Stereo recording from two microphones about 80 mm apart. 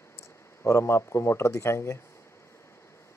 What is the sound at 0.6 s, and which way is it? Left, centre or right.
Speech, left.